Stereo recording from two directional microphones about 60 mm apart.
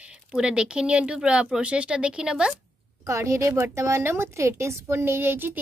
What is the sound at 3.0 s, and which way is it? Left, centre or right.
A woman's voice, right.